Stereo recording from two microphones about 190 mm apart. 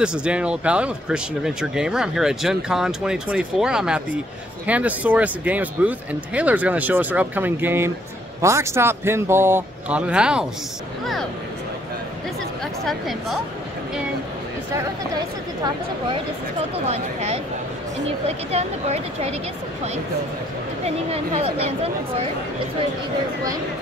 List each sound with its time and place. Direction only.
0.0 s speech: 5° right (ahead or behind)
12.8 s speech: centre (ahead or behind)
16.8 s speech: 35° right (ahead or behind)
18.5 s speech: 35° right (ahead or behind)
20.8 s speech: 30° right (ahead or behind)